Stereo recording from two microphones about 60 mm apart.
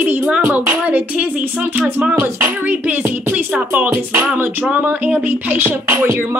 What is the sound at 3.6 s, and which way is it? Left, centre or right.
Speech, right.